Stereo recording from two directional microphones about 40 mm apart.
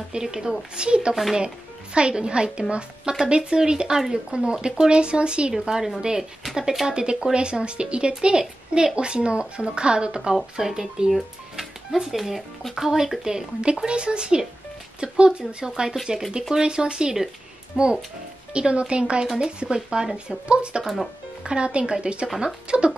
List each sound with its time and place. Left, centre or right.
0.1 s a woman's voice: centre
5.5 s speech: centre
6.9 s a woman's voice: right
10.6 s a woman's voice: centre